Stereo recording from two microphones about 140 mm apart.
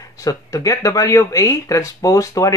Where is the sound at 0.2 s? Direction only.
25° left (ahead or behind).